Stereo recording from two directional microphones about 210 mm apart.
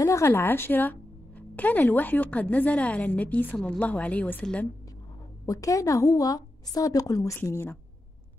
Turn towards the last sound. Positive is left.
turn(degrees=10)  # may be behind; listen again after turning